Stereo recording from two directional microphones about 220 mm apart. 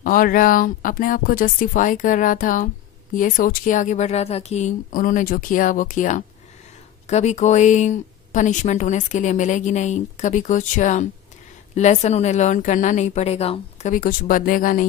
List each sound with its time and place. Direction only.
0.0 s a woman's voice: 40° left (ahead or behind)